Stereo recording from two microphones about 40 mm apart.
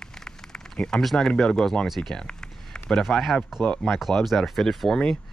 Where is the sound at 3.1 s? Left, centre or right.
Left.